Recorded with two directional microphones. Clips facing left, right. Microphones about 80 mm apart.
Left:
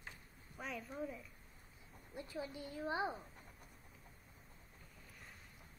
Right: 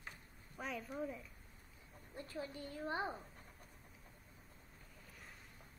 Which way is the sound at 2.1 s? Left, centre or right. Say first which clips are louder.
Left 1 dB; centre.